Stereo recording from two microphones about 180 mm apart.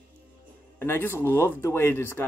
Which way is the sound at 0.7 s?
10° left (ahead or behind).